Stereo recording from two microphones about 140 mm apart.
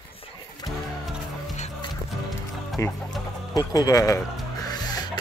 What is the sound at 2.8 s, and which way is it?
Speech, 25° left (ahead or behind).